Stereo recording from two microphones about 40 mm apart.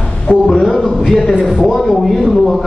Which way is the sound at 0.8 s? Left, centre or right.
Centre.